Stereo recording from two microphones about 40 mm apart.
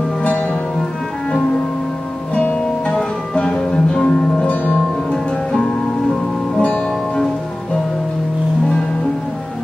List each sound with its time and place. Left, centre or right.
2.5 s music: left; by 4.3 s centre
4.4 s music: left
5.1 s music: centre